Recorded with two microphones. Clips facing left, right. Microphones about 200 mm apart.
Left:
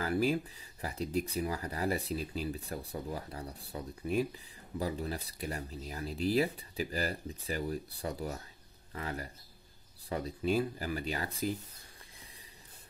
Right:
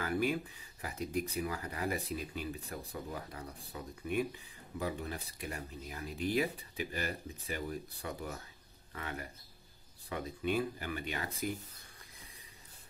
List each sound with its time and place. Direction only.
0.0 s speech: 35° left (ahead or behind)